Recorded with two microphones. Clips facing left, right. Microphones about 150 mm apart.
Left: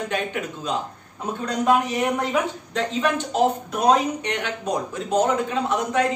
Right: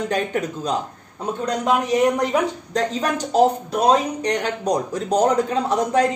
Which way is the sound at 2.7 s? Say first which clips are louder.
Left 1 dB; 40° right (ahead or behind).